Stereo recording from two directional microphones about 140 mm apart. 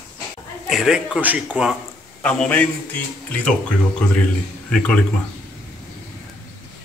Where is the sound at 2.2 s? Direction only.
10° left (ahead or behind).